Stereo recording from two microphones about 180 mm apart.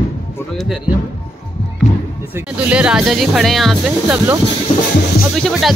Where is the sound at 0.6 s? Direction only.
5° right (ahead or behind).